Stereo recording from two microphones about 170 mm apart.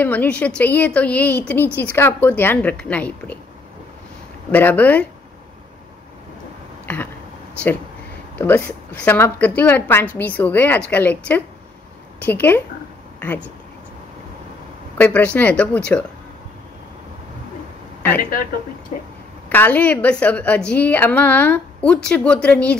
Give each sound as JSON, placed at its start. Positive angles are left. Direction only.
{"t": 0.0, "sound": "a woman's voice", "side_deg": 10}
{"t": 4.5, "sound": "a woman's voice", "side_deg": 10}
{"t": 6.9, "sound": "a sound", "side_deg": 10}
{"t": 8.4, "sound": "a woman's voice", "side_deg": 10}
{"t": 15.0, "sound": "a woman's voice", "side_deg": 10}
{"t": 18.9, "sound": "speech", "side_deg": 40}
{"t": 19.5, "sound": "a woman's voice", "side_deg": 10}